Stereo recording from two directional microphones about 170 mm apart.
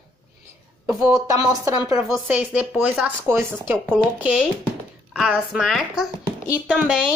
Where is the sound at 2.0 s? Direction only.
5° right (ahead or behind).